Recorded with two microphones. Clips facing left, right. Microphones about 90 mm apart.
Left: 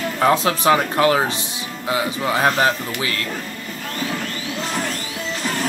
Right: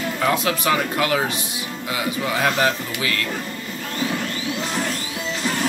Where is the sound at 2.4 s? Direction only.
35° left (ahead or behind).